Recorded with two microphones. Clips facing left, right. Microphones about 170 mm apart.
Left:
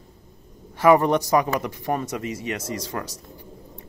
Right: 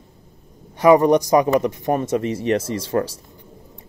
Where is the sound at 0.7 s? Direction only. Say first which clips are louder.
Right 4 dB; 15° right (ahead or behind).